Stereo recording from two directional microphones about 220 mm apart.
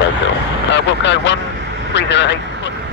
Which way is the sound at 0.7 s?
55° left (ahead or behind).